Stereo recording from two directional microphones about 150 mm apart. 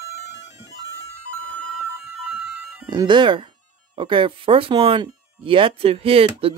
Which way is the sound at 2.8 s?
30° right (ahead or behind).